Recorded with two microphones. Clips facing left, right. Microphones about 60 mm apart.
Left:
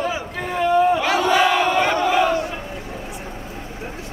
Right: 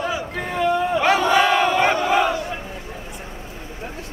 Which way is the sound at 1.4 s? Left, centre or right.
Right.